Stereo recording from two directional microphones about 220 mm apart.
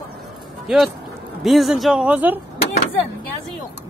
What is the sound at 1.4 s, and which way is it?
Speech, centre (ahead or behind).